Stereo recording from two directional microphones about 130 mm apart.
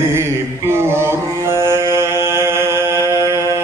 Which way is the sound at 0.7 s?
20° right (ahead or behind).